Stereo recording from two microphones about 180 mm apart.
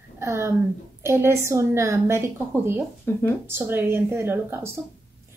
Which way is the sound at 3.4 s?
10° right (ahead or behind).